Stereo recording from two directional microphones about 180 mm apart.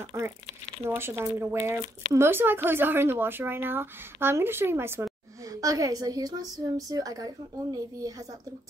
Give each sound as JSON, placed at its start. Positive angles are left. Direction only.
{"t": 0.1, "sound": "a woman's voice", "side_deg": -15}